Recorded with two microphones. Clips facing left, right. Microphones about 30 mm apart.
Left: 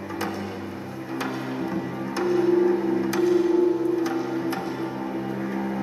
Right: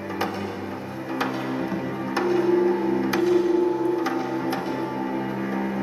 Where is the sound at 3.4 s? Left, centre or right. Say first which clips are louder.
Left 1 dB; centre.